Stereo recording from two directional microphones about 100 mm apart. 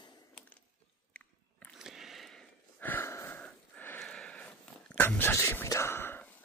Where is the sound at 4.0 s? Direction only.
5° left (ahead or behind); by 5.6 s 20° left (ahead or behind).